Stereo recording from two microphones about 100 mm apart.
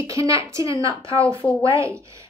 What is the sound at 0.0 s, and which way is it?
A woman's voice, 35° right (ahead or behind).